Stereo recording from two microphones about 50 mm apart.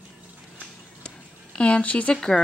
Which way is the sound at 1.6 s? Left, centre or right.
Left.